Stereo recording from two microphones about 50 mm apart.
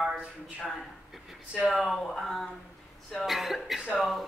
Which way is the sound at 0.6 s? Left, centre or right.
Centre.